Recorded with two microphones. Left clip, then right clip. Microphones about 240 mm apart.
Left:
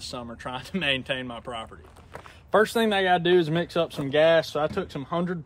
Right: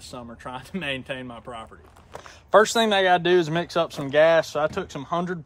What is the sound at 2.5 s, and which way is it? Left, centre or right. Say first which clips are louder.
Speech: right 4 dB; right.